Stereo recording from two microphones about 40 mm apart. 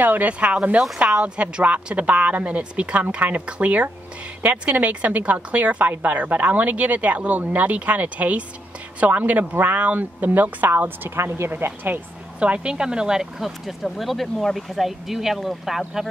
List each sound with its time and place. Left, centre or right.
0.0 s speech: right
0.3 s a woman's voice: right
10.8 s a woman's voice: right
12.4 s speech: right
13.4 s speech: centre